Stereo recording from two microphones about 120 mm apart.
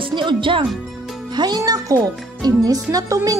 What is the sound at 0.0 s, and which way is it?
A woman's voice, 40° right (ahead or behind).